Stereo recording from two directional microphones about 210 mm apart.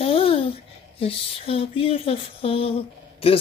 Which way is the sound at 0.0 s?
25° left (ahead or behind).